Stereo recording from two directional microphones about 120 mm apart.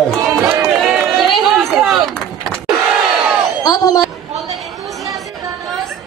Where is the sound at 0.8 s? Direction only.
Centre (ahead or behind).